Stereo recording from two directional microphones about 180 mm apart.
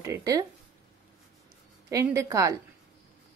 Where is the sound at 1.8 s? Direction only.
15° right (ahead or behind).